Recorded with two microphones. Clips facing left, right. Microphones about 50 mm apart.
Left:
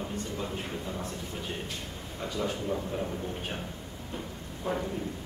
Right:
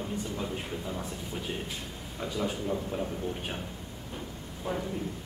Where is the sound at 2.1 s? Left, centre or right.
Centre.